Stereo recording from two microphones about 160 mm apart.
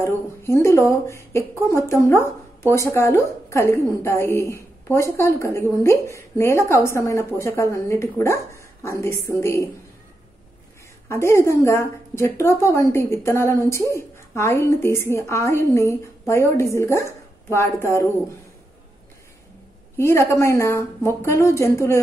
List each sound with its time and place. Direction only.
0.0 s speech: 15° left (ahead or behind)
11.1 s speech: 15° left (ahead or behind)
20.0 s speech: 15° left (ahead or behind)